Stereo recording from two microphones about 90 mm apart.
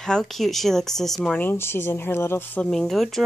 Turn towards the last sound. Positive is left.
turn(degrees=0)  # may be behind; listen again after turning